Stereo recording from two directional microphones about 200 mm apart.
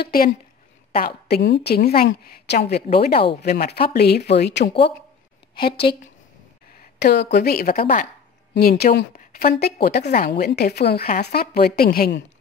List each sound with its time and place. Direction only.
0.0 s a woman's voice: 45° left (ahead or behind)
6.8 s a woman's voice: 55° left (ahead or behind)